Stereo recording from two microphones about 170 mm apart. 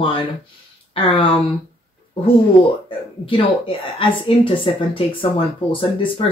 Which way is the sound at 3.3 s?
30° left (ahead or behind).